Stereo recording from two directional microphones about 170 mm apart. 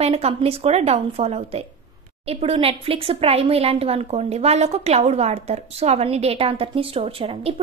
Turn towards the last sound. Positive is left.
turn(degrees=-35)  # may be behind; listen again after turning